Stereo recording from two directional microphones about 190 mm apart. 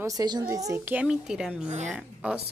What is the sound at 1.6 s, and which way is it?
Speech, 35° right (ahead or behind).